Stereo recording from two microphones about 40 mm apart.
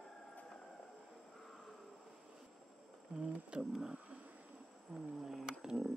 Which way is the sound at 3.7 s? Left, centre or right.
Centre.